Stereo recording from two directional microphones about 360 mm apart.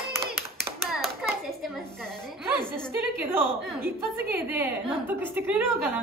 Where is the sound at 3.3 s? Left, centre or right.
Centre.